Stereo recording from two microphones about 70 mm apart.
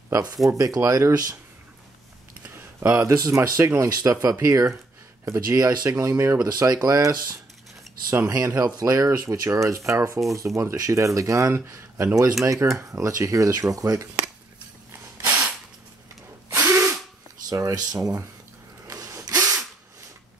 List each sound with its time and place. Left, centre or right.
0.1 s speech: right
2.8 s speech: right
3.2 s speech: right
6.4 s speech: right
15.2 s a sound: right
16.4 s drill: right
17.6 s speech: right
18.9 s a sound: right
19.2 s drill: right